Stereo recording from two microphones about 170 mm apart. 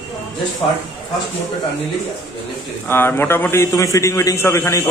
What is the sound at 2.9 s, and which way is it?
A man's voice, 15° left (ahead or behind).